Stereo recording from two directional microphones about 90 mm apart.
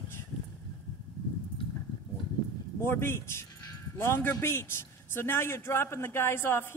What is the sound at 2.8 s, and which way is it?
A man's voice, 25° left (ahead or behind).